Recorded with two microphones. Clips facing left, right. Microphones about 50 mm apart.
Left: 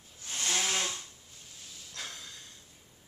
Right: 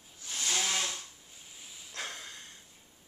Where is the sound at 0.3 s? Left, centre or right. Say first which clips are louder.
Left 1 dB; left.